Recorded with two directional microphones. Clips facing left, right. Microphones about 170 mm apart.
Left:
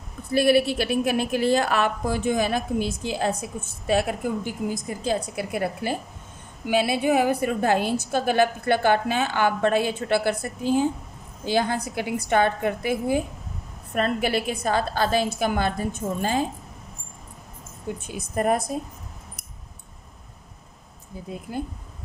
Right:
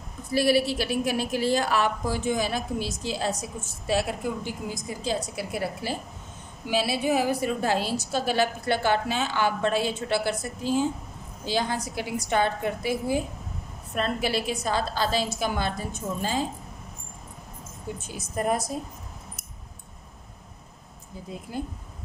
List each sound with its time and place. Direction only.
0.3 s a woman's voice: 55° left (ahead or behind)
18.0 s a woman's voice: 60° left (ahead or behind)